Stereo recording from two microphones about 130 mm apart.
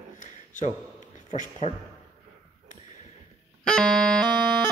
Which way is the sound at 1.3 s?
70° left (ahead or behind).